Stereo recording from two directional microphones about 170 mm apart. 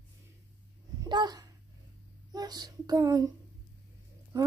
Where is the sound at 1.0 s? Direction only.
25° right (ahead or behind).